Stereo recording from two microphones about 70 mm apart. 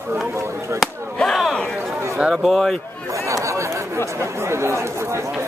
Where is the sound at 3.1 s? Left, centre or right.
Right.